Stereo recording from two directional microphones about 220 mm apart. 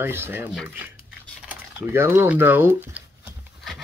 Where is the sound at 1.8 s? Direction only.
10° right (ahead or behind).